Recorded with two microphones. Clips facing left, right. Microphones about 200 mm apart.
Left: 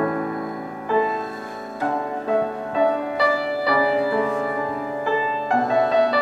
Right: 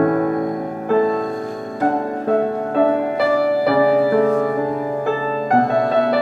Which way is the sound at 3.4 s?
45° right (ahead or behind).